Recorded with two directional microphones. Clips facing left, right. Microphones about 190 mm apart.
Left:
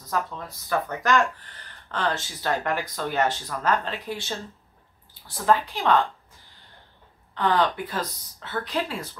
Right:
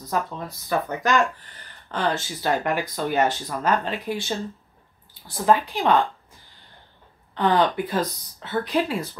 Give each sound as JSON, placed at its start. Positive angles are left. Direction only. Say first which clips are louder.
{"t": 0.1, "sound": "speech", "louder": "right 2 dB", "side_deg": -15}
{"t": 5.4, "sound": "speech", "louder": "right 2 dB", "side_deg": -15}
{"t": 7.3, "sound": "speech", "louder": "right 3 dB", "side_deg": -15}